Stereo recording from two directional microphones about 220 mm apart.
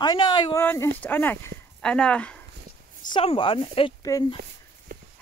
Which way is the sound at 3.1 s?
25° left (ahead or behind).